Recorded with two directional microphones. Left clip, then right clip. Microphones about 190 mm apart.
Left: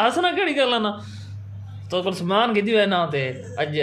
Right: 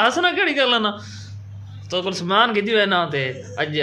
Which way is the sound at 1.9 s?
5° left (ahead or behind).